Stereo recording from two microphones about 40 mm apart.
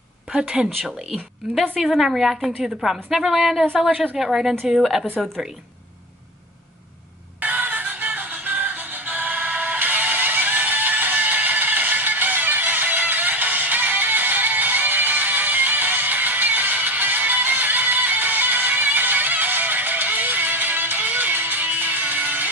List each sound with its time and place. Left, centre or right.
0.3 s speech: right
1.1 s a woman's voice: centre
2.0 s a woman's voice: centre
3.9 s a woman's voice: right
4.2 s a woman's voice: centre
5.2 s a woman's voice: centre
7.3 s music: right